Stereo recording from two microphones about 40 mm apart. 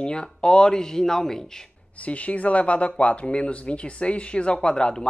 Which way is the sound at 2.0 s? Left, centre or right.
Left.